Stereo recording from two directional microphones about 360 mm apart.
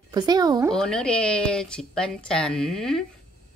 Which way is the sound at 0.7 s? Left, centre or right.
Centre.